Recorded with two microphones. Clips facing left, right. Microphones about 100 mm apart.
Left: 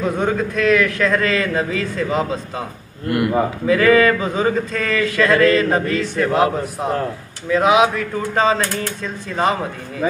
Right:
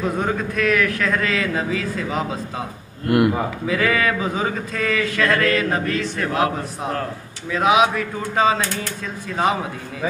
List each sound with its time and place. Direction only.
0.0 s speech: centre (ahead or behind)
3.1 s a man's voice: 20° right (ahead or behind)
3.6 s speech: 5° right (ahead or behind)
7.5 s speech: centre (ahead or behind)